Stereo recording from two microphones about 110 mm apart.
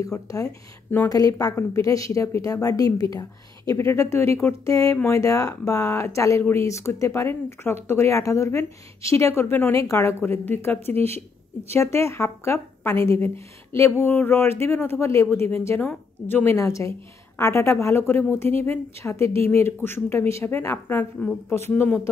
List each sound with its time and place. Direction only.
0.0 s a woman's voice: 30° left (ahead or behind)